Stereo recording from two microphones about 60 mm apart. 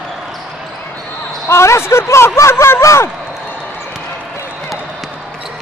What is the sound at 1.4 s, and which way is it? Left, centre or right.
Speech, left.